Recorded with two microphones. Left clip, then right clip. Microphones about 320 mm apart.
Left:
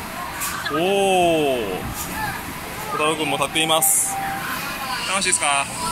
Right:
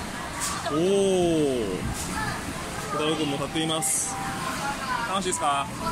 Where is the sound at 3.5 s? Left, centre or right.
Centre.